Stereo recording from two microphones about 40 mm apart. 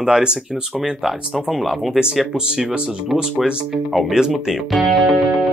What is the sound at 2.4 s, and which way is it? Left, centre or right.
Speech, centre.